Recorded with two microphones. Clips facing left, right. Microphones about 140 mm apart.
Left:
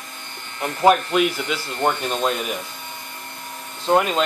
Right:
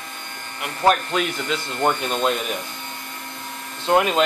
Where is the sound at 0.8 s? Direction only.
5° left (ahead or behind).